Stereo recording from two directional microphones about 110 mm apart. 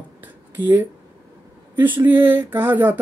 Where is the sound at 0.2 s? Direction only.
15° right (ahead or behind).